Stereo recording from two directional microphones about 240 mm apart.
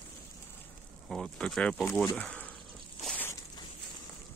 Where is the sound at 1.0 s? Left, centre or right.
Centre.